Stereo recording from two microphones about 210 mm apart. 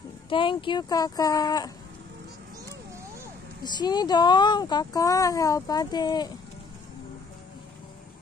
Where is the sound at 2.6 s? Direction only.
15° right (ahead or behind).